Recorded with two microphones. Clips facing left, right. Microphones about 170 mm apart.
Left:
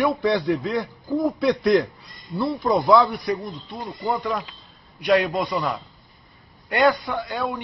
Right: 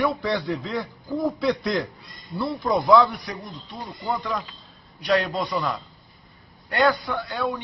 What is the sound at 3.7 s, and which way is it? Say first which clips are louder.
A man's voice: left 2 dB; 20° left (ahead or behind).